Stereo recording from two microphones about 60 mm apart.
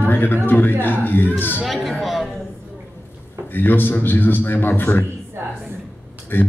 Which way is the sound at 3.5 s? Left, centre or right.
Left.